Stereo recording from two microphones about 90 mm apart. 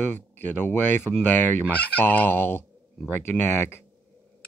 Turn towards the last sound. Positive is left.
turn(degrees=25)  # may be behind; listen again after turning